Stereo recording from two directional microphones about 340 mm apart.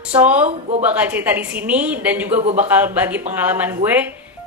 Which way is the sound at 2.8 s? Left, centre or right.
Centre.